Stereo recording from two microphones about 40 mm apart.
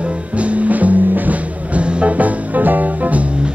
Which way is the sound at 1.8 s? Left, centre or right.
Right.